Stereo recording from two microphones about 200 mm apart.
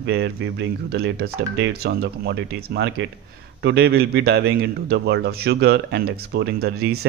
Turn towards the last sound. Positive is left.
turn(degrees=-55)  # may be behind; listen again after turning